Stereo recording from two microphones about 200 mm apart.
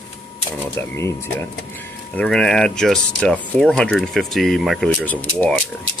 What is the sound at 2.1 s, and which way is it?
Speech, 5° left (ahead or behind).